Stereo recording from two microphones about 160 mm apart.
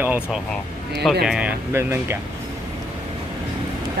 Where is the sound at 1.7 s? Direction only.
15° right (ahead or behind).